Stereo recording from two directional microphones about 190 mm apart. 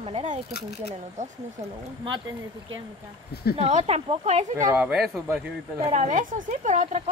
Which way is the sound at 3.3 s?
55° left (ahead or behind).